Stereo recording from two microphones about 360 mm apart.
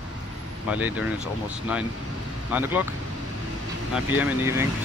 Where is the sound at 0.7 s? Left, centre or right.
Centre.